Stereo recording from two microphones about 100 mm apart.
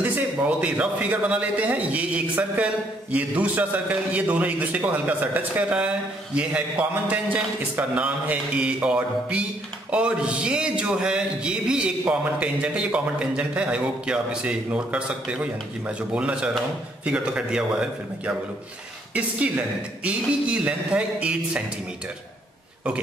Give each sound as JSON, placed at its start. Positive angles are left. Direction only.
{"t": 0.0, "sound": "a man's voice", "side_deg": -15}